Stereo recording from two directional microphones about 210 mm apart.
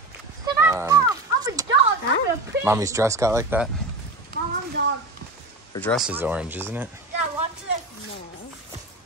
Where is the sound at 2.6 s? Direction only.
15° right (ahead or behind).